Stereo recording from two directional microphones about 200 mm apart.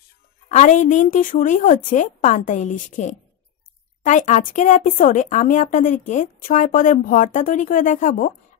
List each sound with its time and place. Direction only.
0.5 s speech: 40° left (ahead or behind)